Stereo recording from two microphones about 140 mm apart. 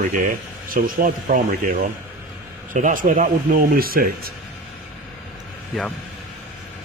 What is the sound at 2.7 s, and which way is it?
Speech, 65° right (ahead or behind).